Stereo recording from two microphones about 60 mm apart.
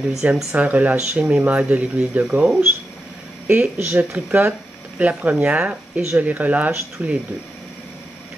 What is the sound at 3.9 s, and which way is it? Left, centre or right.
Speech, right.